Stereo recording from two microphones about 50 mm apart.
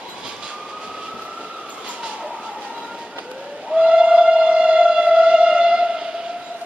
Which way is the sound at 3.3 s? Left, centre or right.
Centre.